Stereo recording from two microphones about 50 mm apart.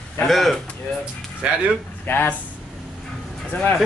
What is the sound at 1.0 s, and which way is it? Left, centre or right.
Speech, centre.